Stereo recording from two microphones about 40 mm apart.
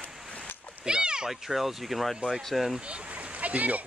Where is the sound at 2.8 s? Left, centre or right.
Right.